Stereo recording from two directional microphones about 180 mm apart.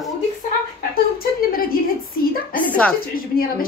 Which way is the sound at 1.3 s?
55° left (ahead or behind).